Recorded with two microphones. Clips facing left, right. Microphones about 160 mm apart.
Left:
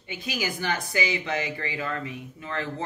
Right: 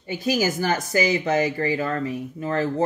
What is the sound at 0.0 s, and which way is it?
Speech, 40° right (ahead or behind).